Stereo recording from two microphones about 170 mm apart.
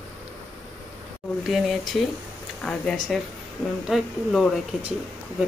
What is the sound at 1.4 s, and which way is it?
Speech, centre (ahead or behind).